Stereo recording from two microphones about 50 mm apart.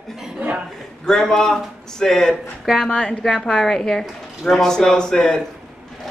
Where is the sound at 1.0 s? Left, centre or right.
Centre.